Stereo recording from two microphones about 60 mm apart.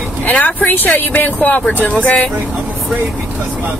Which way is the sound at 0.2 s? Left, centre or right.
Left.